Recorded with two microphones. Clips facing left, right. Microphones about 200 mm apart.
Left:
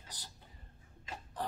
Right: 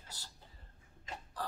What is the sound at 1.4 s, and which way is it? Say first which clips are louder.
Music: left 2 dB; 20° left (ahead or behind).